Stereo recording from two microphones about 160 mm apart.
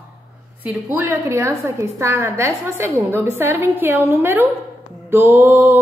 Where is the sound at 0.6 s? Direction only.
10° right (ahead or behind).